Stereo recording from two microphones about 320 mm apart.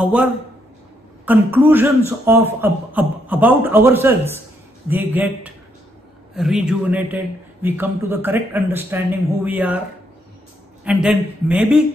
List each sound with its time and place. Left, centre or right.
0.0 s a man's voice: centre
10.8 s a man's voice: centre